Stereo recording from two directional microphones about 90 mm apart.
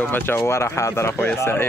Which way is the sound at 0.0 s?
25° left (ahead or behind).